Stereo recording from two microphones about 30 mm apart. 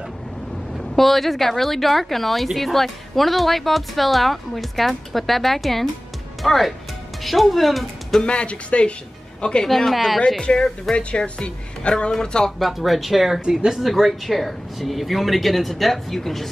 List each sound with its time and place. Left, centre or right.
0.7 s speech: centre
8.2 s a woman's voice: left
9.8 s speech: centre
10.4 s a woman's voice: left
12.1 s speech: left
12.8 s speech: centre
13.7 s speech: centre